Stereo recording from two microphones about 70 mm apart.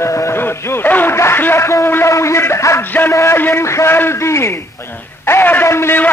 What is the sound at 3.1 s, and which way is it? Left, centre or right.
Speech, left.